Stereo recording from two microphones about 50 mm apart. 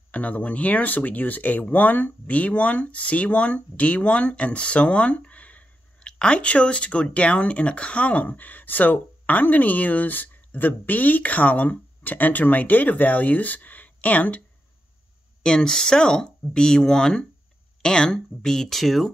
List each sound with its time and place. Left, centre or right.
0.1 s speech: left
6.0 s speech: centre
15.4 s speech: centre